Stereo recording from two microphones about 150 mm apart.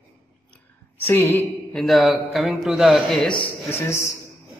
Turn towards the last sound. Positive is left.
turn(degrees=20)  # may be behind; listen again after turning